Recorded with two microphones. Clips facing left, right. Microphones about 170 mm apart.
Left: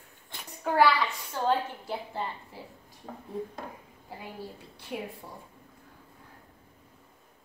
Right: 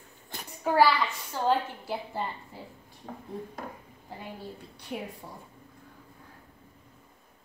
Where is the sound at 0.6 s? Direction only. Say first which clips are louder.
Right 1 dB; 5° right (ahead or behind).